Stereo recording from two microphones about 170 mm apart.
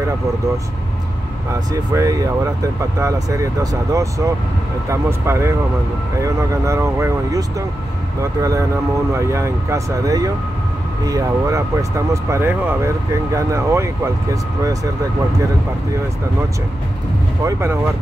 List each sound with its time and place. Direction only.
1.5 s speech: 15° right (ahead or behind)
17.4 s speech: 15° right (ahead or behind)